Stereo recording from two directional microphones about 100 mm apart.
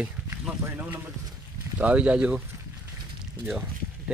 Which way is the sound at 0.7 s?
25° right (ahead or behind).